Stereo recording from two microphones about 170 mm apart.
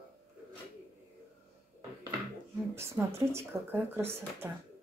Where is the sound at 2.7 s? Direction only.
15° right (ahead or behind).